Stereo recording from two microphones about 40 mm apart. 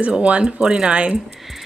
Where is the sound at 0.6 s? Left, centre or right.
Centre.